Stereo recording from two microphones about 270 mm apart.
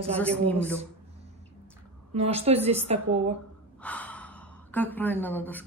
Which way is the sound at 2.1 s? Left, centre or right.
Right.